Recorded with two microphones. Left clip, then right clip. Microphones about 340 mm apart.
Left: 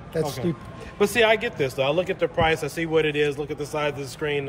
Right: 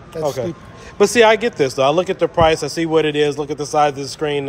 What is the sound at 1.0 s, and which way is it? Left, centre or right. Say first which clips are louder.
A man's voice: right 8 dB; centre.